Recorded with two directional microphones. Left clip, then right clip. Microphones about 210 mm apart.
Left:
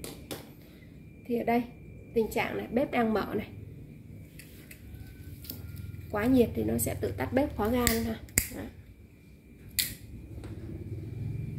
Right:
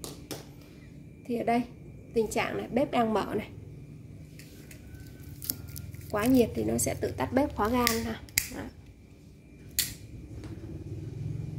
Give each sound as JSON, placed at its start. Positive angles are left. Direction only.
{"t": 1.2, "sound": "a woman's voice", "side_deg": -20}
{"t": 6.1, "sound": "speech", "side_deg": -15}